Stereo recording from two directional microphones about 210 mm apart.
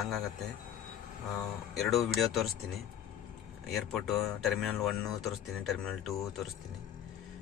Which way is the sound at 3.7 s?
Centre (ahead or behind).